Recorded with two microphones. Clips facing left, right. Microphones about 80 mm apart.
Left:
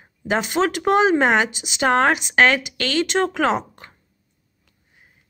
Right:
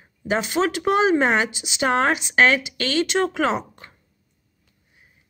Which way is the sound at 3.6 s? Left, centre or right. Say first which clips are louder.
Left 2 dB; left.